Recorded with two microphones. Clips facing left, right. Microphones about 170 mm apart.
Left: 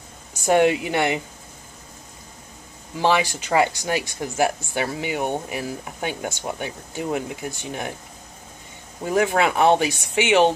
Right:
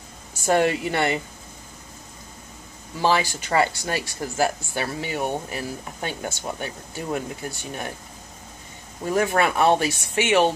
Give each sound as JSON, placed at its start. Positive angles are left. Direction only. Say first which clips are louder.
{"t": 0.5, "sound": "speech", "louder": "left 3 dB", "side_deg": 15}
{"t": 3.0, "sound": "speech", "louder": "left 1 dB", "side_deg": 15}
{"t": 9.0, "sound": "speech", "louder": "left 1 dB", "side_deg": 15}